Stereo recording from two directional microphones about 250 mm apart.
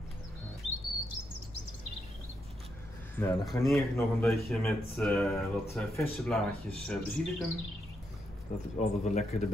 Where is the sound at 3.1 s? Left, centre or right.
Centre.